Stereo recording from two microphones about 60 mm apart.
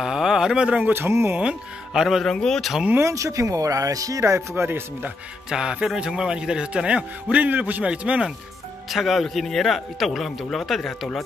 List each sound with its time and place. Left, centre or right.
0.0 s speech: centre
0.7 s speech: right
0.9 s speech: right
2.0 s speech: centre
2.2 s speech: centre
3.0 s speech: right
4.2 s speech: right
5.5 s a man's voice: centre; by 7.8 s right
7.8 s speech: centre
8.9 s speech: centre